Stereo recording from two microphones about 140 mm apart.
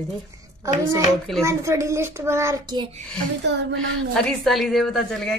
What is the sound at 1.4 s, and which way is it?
A child's voice, 20° right (ahead or behind).